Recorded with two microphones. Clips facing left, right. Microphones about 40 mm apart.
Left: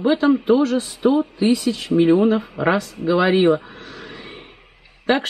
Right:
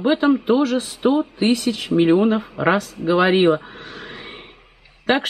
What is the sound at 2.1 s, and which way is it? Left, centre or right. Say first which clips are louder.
Speech: even; centre.